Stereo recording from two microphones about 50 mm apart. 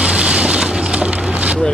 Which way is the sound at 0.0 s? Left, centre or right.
Centre.